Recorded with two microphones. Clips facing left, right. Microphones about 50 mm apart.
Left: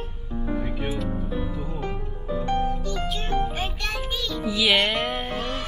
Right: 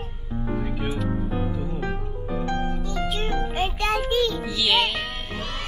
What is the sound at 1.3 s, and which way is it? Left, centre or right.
Music, right.